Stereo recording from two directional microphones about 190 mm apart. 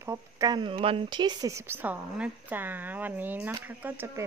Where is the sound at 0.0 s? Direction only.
15° right (ahead or behind).